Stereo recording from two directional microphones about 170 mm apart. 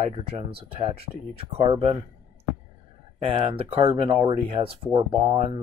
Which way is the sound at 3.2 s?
30° right (ahead or behind).